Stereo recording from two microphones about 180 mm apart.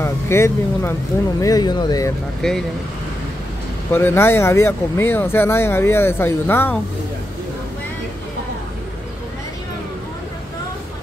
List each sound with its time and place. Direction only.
0.0 s speech: 15° left (ahead or behind)
2.4 s speech: 5° left (ahead or behind)
3.9 s speech: 10° left (ahead or behind)